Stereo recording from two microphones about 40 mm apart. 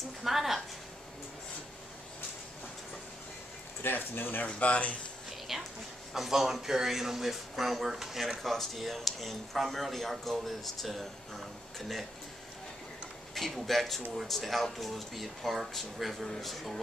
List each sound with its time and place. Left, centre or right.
0.2 s speech: centre
3.8 s speech: left
4.5 s speech: left
5.5 s speech: centre
13.3 s speech: centre